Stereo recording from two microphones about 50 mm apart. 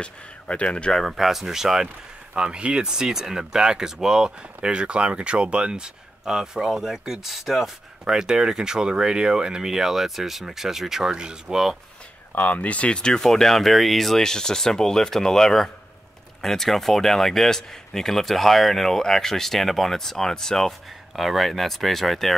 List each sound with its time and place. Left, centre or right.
0.0 s speech: left
1.0 s speech: centre
12.4 s speech: left
13.2 s speech: centre